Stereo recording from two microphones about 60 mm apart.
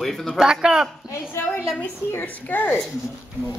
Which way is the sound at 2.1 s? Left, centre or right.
Left.